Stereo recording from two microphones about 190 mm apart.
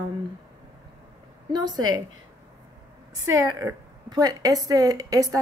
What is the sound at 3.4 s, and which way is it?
A woman's voice, 15° right (ahead or behind).